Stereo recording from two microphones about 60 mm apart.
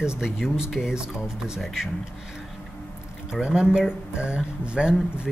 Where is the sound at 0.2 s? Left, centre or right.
Centre.